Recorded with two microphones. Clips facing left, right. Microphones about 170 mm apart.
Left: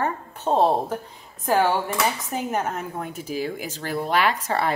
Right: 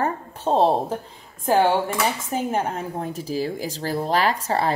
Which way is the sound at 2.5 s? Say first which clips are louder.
Right 2 dB; 30° right (ahead or behind).